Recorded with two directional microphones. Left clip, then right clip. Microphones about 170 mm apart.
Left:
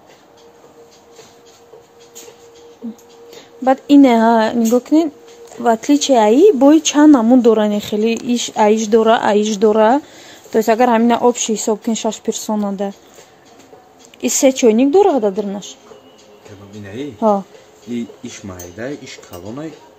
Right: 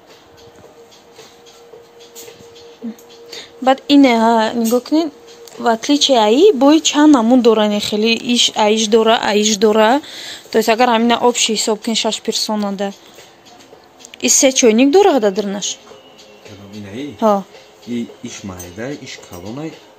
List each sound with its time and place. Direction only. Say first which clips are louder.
3.3 s speech: right 1 dB; 10° left (ahead or behind)
14.2 s speech: right 1 dB; 15° left (ahead or behind)